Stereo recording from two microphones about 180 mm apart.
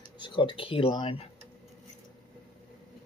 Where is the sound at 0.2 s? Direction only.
25° left (ahead or behind).